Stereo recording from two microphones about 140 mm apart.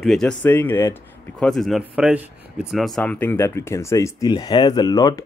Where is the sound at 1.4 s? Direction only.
Centre (ahead or behind).